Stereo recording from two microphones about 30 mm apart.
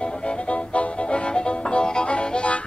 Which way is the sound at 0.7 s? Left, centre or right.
Left.